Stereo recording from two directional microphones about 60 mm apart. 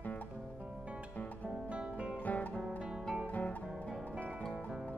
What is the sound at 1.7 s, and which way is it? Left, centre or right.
Guitar, centre.